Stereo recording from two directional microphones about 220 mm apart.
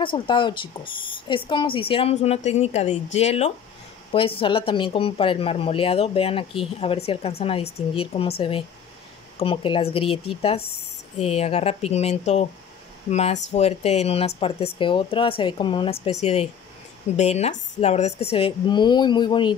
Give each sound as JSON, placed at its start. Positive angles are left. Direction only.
{"t": 0.0, "sound": "speech", "side_deg": 20}